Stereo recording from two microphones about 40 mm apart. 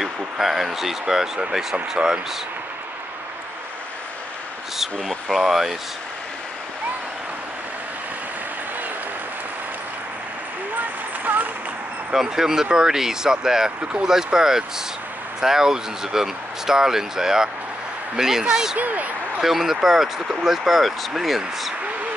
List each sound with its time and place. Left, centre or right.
0.0 s speech: centre
5.0 s speech: centre
11.3 s a sound: right
12.1 s speech: centre
18.8 s speech: right
19.4 s speech: centre